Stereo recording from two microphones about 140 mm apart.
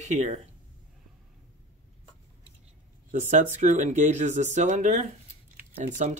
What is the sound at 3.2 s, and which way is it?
Speech, 60° right (ahead or behind).